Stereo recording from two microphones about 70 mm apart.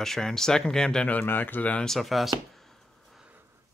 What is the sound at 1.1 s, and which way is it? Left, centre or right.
Speech, left.